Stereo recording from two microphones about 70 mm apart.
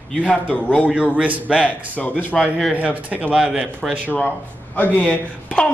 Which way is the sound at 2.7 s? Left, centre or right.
Right.